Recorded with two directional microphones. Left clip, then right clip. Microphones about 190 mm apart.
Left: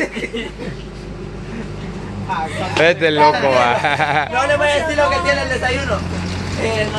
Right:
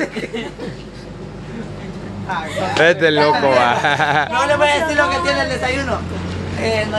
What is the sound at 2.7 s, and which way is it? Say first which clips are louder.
Speech: right 1 dB; 15° right (ahead or behind).